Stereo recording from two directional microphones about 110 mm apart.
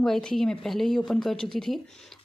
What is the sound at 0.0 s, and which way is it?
Speech, 5° left (ahead or behind).